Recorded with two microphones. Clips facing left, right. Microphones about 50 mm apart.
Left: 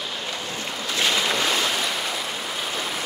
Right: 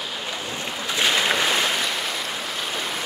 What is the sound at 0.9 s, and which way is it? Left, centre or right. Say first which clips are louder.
Boat: right 2 dB; right.